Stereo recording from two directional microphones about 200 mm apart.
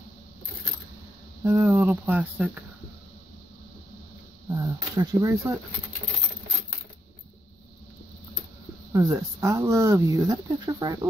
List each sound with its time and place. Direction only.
1.4 s speech: 15° right (ahead or behind)
4.5 s a sound: 15° right (ahead or behind)
8.9 s speech: 15° right (ahead or behind)